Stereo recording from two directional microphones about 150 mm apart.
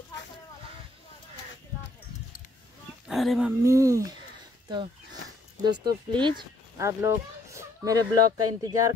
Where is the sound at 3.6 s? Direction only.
20° right (ahead or behind).